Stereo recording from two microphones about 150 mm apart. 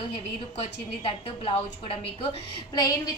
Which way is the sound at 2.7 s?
25° left (ahead or behind).